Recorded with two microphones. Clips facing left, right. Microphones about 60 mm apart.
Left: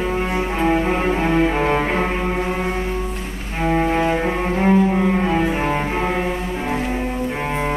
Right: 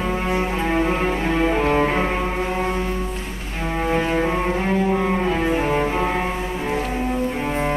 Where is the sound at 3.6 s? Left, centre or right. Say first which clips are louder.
Left 4 dB; centre.